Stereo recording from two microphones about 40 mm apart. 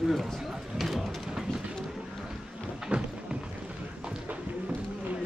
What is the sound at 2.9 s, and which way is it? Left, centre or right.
Music, right.